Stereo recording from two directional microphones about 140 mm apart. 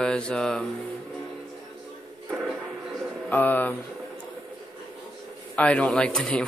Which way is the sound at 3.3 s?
10° left (ahead or behind).